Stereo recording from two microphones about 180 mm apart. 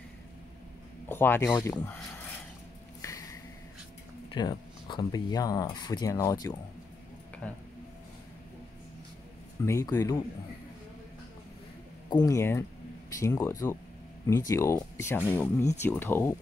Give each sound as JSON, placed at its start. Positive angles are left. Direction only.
{"t": 1.0, "sound": "speech", "side_deg": 10}
{"t": 3.0, "sound": "a sound", "side_deg": 15}
{"t": 4.3, "sound": "speech", "side_deg": 25}
{"t": 7.4, "sound": "speech", "side_deg": 5}
{"t": 9.7, "sound": "speech", "side_deg": 15}
{"t": 12.1, "sound": "speech", "side_deg": 20}